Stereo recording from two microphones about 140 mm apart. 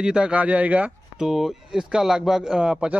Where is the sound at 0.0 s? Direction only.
5° right (ahead or behind).